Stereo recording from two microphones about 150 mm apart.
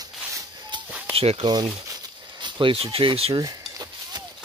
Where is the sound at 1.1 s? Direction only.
40° right (ahead or behind).